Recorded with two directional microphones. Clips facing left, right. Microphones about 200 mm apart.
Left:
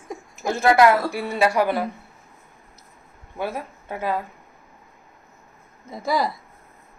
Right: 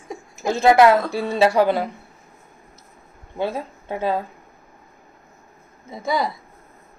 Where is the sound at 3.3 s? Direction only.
20° right (ahead or behind).